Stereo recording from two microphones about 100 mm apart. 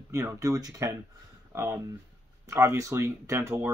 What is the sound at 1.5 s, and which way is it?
Speech, 25° right (ahead or behind).